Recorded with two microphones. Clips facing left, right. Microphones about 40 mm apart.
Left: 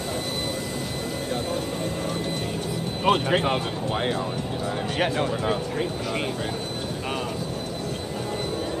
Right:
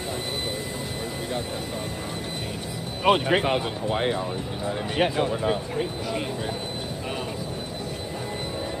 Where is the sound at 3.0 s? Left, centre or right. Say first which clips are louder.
Right 1 dB; right.